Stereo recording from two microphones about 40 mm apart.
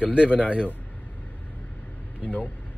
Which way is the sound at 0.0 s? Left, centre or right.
Right.